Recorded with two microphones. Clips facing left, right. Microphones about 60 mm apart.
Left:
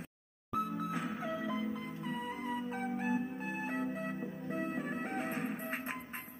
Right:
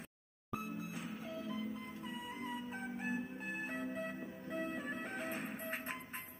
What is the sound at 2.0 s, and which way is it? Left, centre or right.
Music, left.